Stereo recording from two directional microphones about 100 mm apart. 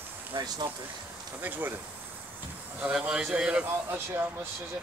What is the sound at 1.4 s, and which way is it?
Speech, 20° right (ahead or behind).